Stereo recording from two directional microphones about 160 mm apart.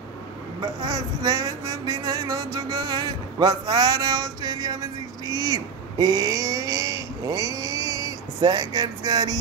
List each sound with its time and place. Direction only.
0.6 s speech: 25° right (ahead or behind)